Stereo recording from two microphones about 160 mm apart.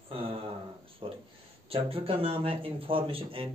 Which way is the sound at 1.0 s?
30° right (ahead or behind).